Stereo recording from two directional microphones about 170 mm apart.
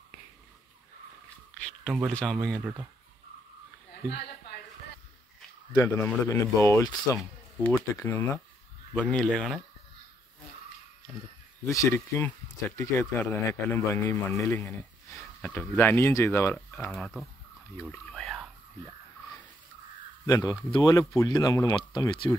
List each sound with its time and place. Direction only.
1.9 s speech: 5° left (ahead or behind)
5.7 s speech: 15° left (ahead or behind)
7.2 s speech: 5° left (ahead or behind)
11.6 s speech: 15° left (ahead or behind); by 17.3 s centre (ahead or behind)
17.7 s a sound: 5° left (ahead or behind)
20.2 s speech: 20° left (ahead or behind)